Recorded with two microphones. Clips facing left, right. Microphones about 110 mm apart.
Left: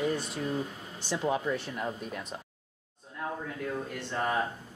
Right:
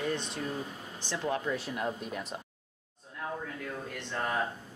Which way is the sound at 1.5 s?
5° right (ahead or behind).